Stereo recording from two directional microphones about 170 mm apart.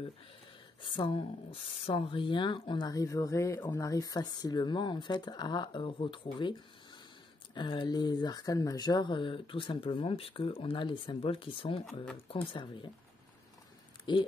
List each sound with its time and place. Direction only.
0.8 s speech: 30° left (ahead or behind)
7.5 s speech: 30° left (ahead or behind)
14.1 s speech: 25° left (ahead or behind)